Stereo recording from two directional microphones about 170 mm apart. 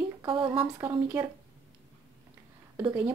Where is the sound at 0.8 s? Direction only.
15° right (ahead or behind).